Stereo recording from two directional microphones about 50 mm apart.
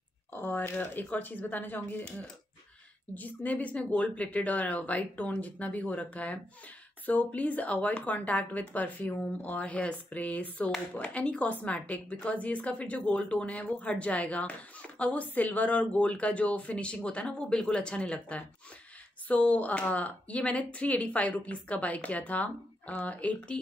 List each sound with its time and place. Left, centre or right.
0.3 s speech: left
3.2 s a woman's voice: left